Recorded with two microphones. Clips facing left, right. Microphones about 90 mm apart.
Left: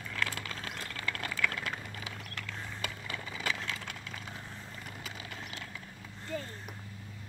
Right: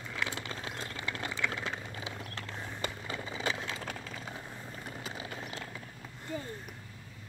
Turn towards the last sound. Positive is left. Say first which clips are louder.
# left 1 dB
turn(degrees=-15)  # may be behind; listen again after turning